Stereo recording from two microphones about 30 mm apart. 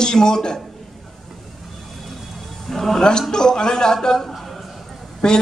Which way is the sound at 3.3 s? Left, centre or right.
Left.